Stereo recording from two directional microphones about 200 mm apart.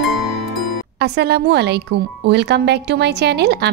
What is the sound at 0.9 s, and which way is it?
A woman's voice, 55° right (ahead or behind).